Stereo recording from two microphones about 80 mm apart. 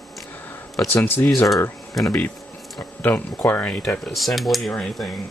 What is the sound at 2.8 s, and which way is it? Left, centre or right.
Speech, left.